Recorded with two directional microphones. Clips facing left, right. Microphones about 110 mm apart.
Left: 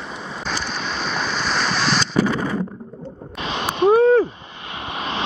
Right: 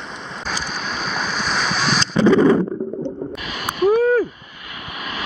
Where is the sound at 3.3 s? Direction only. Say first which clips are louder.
Left 3 dB; 30° left (ahead or behind).